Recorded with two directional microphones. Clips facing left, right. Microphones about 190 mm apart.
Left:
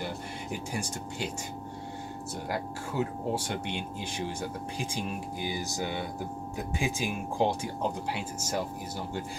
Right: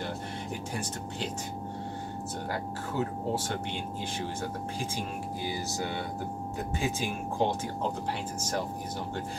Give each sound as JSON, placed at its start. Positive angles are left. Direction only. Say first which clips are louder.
{"t": 2.5, "sound": "speech", "louder": "left 2 dB", "side_deg": 15}